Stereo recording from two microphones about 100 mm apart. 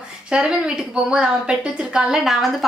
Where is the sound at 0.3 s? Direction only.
10° right (ahead or behind).